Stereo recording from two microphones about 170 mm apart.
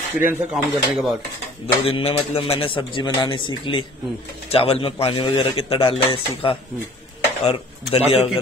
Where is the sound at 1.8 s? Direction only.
35° left (ahead or behind).